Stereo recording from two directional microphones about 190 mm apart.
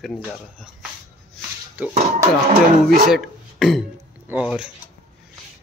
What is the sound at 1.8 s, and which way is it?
Speech, 10° right (ahead or behind).